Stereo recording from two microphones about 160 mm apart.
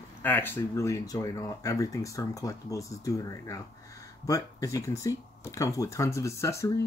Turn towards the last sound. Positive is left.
turn(degrees=20)  # may be behind; listen again after turning